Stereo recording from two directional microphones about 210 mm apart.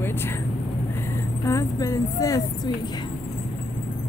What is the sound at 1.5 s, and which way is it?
Speech, 15° left (ahead or behind).